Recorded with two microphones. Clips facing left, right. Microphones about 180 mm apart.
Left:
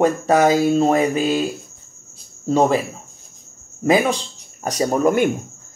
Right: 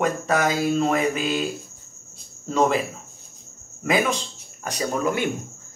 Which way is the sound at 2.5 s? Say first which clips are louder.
Left 4 dB; 35° left (ahead or behind).